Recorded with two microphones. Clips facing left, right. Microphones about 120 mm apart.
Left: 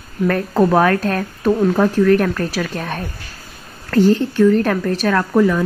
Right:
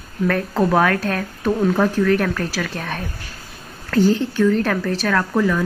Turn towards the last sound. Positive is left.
turn(degrees=10)  # may be behind; listen again after turning